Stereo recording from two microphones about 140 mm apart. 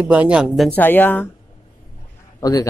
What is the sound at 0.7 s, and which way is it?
Speech, 15° left (ahead or behind).